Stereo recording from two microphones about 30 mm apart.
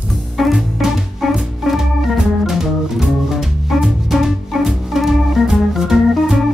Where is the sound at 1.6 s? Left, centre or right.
Centre.